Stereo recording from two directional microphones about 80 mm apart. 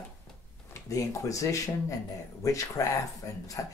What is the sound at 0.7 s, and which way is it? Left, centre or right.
Speech, left.